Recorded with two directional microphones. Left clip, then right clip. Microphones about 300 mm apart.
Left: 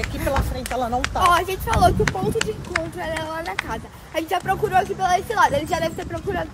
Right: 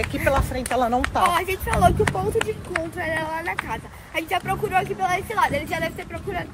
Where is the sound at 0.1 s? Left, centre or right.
Right.